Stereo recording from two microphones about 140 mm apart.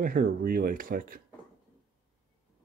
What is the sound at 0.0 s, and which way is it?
Speech, 90° right.